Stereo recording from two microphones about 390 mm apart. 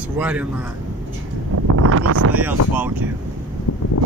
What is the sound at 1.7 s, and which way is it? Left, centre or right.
Speech, right.